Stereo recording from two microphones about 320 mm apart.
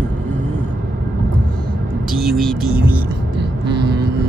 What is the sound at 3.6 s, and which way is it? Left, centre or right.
Vehicle, right.